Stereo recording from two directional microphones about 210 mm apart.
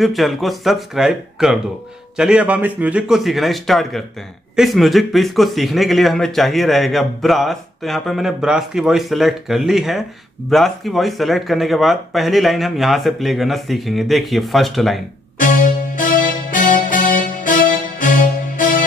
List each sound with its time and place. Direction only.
0.0 s a man's voice: centre (ahead or behind)
15.3 s music: 40° left (ahead or behind)